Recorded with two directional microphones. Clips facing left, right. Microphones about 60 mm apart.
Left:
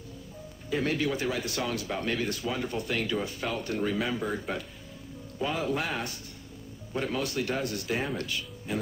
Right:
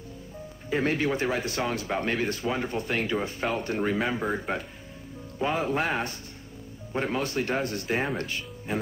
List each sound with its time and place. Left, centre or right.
0.7 s a man's voice: right